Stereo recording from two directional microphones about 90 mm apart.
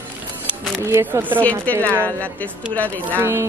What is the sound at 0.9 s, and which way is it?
Speech, 30° right (ahead or behind).